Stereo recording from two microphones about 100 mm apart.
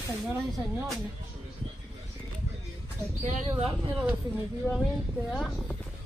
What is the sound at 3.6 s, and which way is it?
Speech, 65° right (ahead or behind).